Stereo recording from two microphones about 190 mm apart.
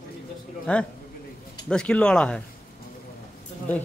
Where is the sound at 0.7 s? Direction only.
5° left (ahead or behind).